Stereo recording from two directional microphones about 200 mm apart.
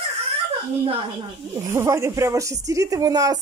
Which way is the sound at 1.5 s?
15° right (ahead or behind).